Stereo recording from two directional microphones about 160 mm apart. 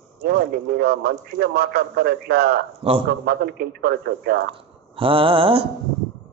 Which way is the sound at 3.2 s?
80° right.